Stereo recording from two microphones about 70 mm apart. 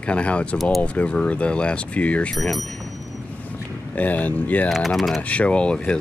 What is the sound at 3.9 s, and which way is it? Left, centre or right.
Speech, left.